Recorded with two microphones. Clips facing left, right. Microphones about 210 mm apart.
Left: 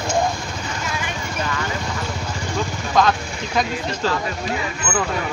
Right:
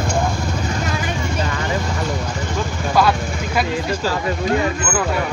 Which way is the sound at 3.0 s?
10° right (ahead or behind).